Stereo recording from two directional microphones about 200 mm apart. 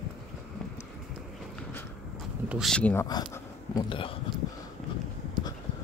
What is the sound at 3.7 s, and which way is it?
Speech, 25° left (ahead or behind).